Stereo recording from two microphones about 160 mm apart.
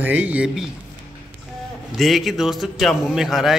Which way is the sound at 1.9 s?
Centre (ahead or behind).